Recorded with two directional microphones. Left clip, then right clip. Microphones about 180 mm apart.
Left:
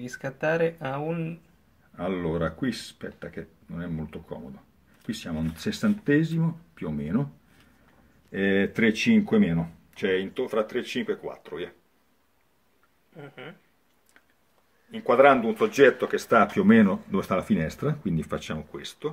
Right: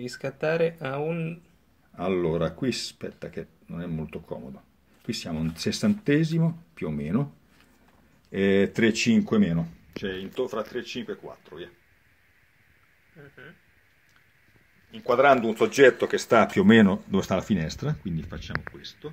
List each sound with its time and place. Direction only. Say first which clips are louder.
0.0 s speech: even; 5° right (ahead or behind)
2.0 s speech: right 3 dB; 25° right (ahead or behind)
8.3 s speech: right 2 dB; 30° right (ahead or behind)
10.3 s speech: left 3 dB; 15° right (ahead or behind)
15.0 s speech: left 1 dB; 35° right (ahead or behind)
18.5 s speech: right 2 dB; 25° right (ahead or behind)